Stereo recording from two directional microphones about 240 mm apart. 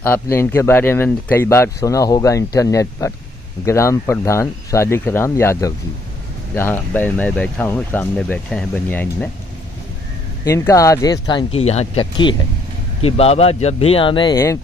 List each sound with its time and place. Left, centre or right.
0.0 s speech: centre
10.4 s speech: centre